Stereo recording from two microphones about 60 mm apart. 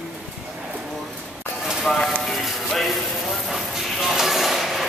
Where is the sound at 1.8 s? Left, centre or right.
Centre.